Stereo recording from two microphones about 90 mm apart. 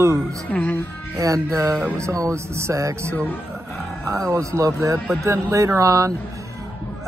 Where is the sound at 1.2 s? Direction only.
40° right (ahead or behind).